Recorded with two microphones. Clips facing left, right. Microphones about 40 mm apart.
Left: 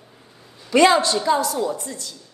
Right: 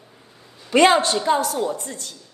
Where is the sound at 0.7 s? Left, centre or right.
Right.